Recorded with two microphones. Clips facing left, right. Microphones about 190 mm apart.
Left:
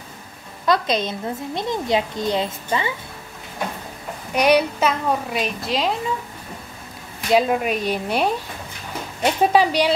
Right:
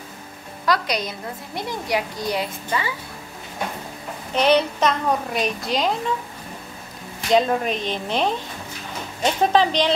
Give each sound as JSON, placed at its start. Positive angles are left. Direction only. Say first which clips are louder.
{"t": 0.7, "sound": "a woman's voice", "louder": "left 3 dB", "side_deg": 25}
{"t": 4.3, "sound": "a woman's voice", "louder": "left 1 dB", "side_deg": 10}
{"t": 7.3, "sound": "speech", "louder": "left 1 dB", "side_deg": 10}